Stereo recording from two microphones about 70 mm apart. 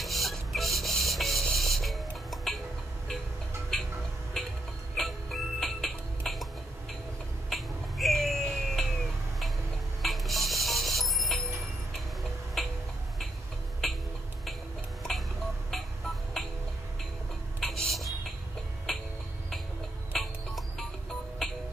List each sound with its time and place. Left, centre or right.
0.0 s printer: centre
4.4 s music: centre
7.4 s finger snapping: centre
10.0 s music: centre
12.6 s a sound: centre
13.8 s a sound: centre
15.7 s music: centre
17.6 s a sound: centre
18.9 s music: centre
20.1 s music: centre